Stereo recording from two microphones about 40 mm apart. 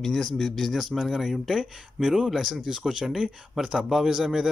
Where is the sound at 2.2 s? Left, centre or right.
Centre.